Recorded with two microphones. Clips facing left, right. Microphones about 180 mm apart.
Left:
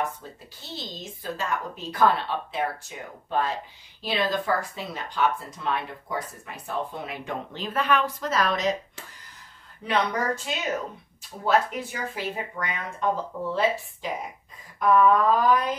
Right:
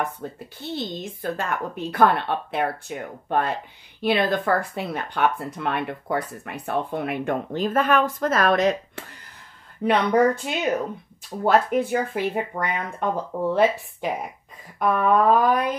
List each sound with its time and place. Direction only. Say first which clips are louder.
0.2 s speech: right 10 dB; 60° right (ahead or behind)